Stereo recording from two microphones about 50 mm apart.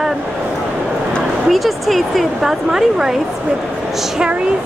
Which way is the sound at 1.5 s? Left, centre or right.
Centre.